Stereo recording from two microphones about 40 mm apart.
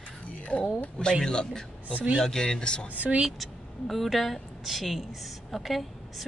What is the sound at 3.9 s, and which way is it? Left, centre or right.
A woman's voice, centre.